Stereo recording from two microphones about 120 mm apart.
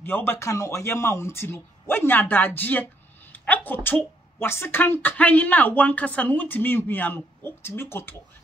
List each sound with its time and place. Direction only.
0.0 s a man's voice: 20° left (ahead or behind)